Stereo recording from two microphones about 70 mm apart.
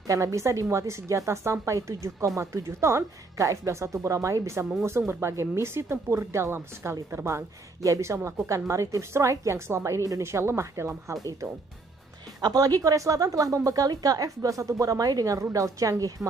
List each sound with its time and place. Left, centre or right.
0.0 s speech: right
7.2 s speech: right
12.4 s a woman's voice: right